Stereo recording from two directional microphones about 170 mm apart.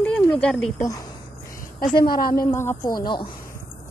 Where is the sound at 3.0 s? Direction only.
25° left (ahead or behind).